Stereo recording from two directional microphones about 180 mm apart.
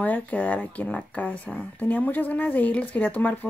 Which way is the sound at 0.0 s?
10° left (ahead or behind).